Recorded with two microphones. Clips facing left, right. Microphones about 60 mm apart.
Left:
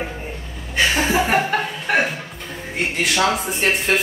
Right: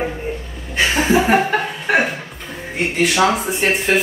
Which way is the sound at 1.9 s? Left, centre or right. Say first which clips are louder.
Right 3 dB; centre.